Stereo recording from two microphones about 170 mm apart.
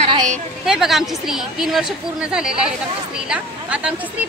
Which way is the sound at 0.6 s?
Centre (ahead or behind).